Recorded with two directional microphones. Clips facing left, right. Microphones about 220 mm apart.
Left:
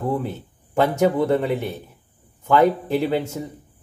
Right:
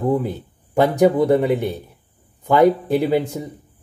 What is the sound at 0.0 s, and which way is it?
Speech, 15° right (ahead or behind).